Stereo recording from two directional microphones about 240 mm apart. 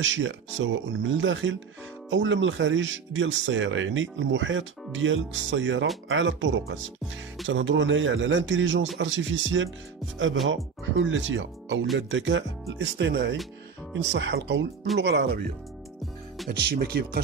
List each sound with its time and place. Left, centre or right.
0.0 s speech: right
16.4 s speech: right